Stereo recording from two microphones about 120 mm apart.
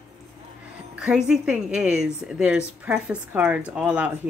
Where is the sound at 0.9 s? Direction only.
5° right (ahead or behind).